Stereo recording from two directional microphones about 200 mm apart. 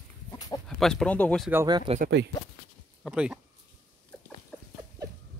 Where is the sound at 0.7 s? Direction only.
Centre (ahead or behind).